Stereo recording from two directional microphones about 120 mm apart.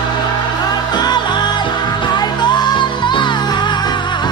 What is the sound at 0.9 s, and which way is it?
Music, 35° left (ahead or behind).